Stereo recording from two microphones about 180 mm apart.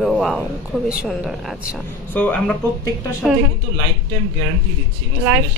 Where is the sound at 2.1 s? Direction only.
10° left (ahead or behind).